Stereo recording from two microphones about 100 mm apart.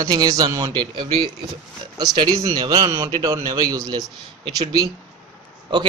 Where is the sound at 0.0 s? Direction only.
40° right (ahead or behind).